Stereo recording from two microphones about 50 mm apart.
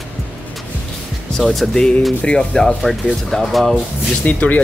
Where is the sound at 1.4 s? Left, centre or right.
Centre.